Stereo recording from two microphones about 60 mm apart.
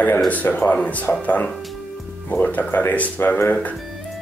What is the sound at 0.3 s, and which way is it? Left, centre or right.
Speech, left.